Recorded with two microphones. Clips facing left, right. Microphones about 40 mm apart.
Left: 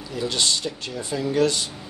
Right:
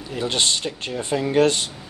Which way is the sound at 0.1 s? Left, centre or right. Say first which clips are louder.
Right 2 dB; right.